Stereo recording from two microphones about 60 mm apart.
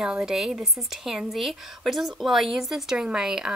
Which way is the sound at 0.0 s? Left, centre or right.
Centre.